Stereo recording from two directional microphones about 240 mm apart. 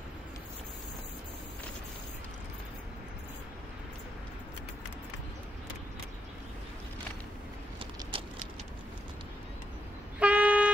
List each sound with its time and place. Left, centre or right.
7.8 s vehicle: right
10.1 s toot: centre